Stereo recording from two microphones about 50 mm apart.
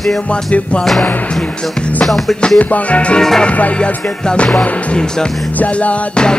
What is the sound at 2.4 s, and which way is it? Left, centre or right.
Music, left.